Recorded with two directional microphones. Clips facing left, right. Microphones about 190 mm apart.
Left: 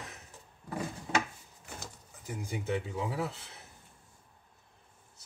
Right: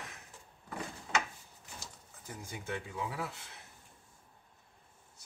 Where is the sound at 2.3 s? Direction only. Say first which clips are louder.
Left 7 dB; 20° left (ahead or behind).